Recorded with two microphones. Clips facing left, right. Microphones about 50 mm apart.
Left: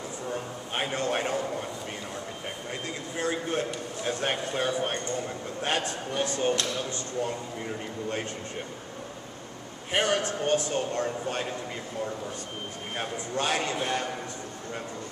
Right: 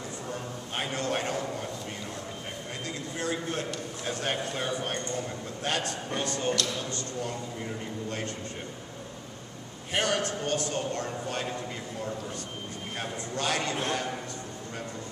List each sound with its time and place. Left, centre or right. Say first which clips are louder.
0.3 s a sound: left 4 dB; centre
3.2 s a man's voice: left 3 dB; centre
9.9 s a man's voice: left 2 dB; centre
12.9 s speech: left 3 dB; centre